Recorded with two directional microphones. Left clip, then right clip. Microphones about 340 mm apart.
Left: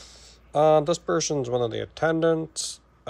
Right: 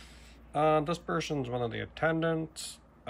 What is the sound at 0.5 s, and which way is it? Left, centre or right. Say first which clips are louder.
Speech: left 8 dB; centre.